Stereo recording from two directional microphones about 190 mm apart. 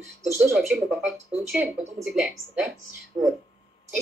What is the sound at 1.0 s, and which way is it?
A woman's voice, centre (ahead or behind).